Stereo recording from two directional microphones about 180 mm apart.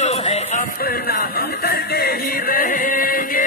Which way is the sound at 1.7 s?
60° left (ahead or behind).